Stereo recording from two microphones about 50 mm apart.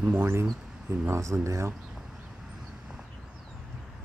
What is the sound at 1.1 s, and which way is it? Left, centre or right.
Speech, right.